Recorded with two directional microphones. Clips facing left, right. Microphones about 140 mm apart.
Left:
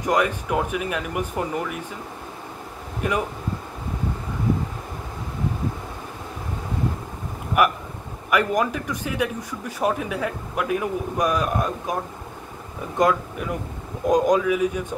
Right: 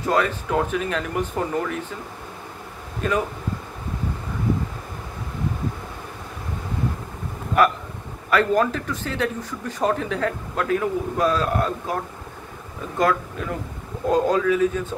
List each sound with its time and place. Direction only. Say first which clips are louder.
0.0 s speech: even; 15° left (ahead or behind)
3.0 s speech: right 1 dB; 15° left (ahead or behind)
7.6 s speech: right 1 dB; 15° left (ahead or behind)